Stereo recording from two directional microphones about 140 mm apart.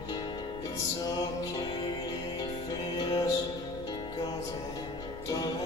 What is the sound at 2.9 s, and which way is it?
Music, 30° left (ahead or behind).